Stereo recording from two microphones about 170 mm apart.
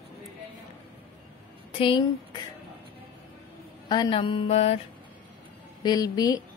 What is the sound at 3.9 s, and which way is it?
Music, 25° left (ahead or behind).